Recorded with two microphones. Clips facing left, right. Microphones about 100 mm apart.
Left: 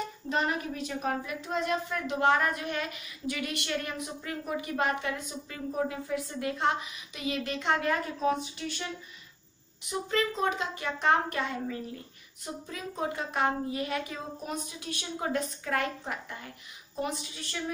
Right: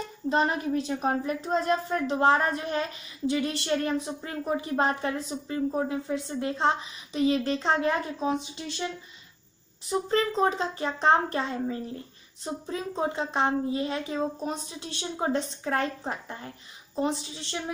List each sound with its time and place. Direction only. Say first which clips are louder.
0.3 s a woman's voice: right 6 dB; 30° right (ahead or behind)
9.8 s a woman's voice: right 4 dB; 35° right (ahead or behind)